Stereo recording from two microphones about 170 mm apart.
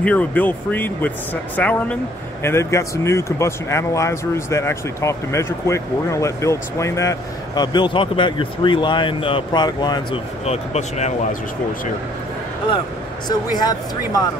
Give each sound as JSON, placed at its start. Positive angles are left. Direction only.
{"t": 0.0, "sound": "speech", "side_deg": 10}
{"t": 10.4, "sound": "speech", "side_deg": 40}
{"t": 13.3, "sound": "speech", "side_deg": 25}